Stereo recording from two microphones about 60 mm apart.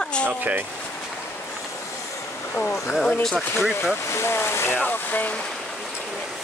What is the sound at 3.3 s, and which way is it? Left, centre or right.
Speech, centre.